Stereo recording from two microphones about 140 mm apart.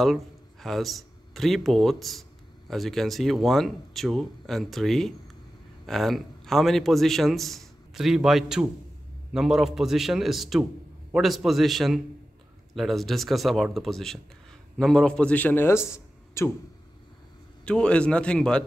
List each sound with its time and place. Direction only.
0.0 s a man's voice: centre (ahead or behind); by 16.5 s 20° left (ahead or behind)
17.6 s a man's voice: 5° left (ahead or behind)